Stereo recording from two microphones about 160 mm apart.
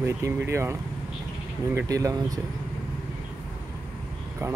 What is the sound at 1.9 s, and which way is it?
Speech, 20° right (ahead or behind).